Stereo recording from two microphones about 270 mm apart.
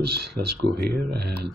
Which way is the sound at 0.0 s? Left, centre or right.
Right.